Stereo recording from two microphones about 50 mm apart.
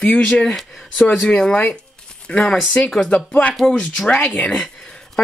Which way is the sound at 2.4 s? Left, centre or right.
Centre.